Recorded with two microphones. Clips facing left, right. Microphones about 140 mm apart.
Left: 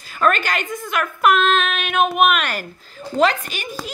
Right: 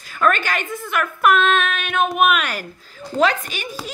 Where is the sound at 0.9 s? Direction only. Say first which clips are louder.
Even; centre (ahead or behind).